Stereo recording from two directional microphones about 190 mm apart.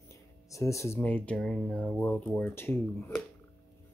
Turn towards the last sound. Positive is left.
turn(degrees=10)  # may be behind; listen again after turning